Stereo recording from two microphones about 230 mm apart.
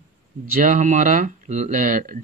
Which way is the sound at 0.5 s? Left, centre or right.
Right.